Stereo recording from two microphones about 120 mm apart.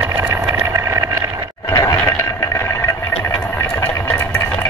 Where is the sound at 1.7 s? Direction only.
30° left (ahead or behind).